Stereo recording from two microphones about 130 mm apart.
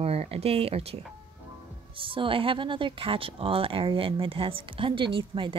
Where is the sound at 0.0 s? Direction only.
50° right (ahead or behind).